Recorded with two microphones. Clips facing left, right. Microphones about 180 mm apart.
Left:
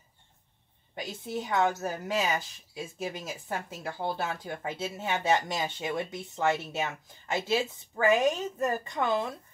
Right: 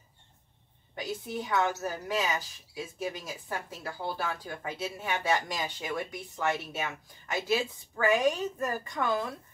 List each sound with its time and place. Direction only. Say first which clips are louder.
0.9 s a woman's voice: even; 25° left (ahead or behind)